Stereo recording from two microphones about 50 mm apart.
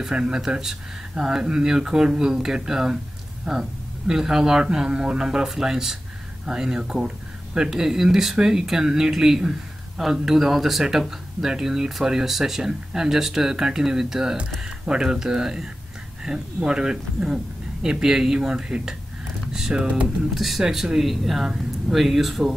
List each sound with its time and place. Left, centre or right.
0.1 s speech: centre
20.3 s speech: centre